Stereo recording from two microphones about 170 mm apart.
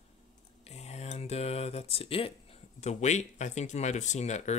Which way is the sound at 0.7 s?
40° left (ahead or behind).